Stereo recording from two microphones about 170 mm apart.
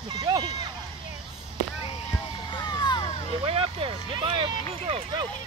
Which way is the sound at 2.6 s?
25° left (ahead or behind).